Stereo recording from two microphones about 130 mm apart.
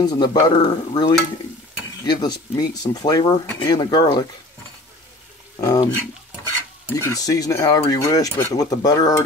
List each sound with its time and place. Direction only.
0.0 s speech: 30° left (ahead or behind)
5.6 s speech: 30° left (ahead or behind)
7.0 s speech: 30° left (ahead or behind)